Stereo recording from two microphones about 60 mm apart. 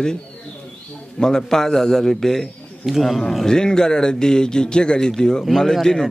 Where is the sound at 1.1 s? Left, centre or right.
Centre.